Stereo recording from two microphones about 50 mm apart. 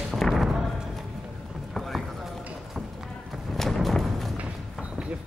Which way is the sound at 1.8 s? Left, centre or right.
Centre.